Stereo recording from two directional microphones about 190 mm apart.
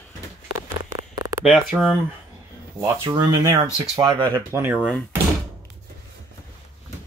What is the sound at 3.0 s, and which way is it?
Speech, 20° right (ahead or behind).